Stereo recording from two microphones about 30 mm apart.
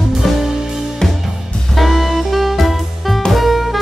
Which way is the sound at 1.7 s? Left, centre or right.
Centre.